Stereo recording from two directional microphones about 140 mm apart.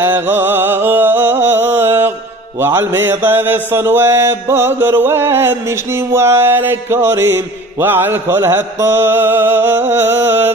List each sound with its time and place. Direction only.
0.0 s music: 15° right (ahead or behind)
2.6 s mantra: 15° right (ahead or behind)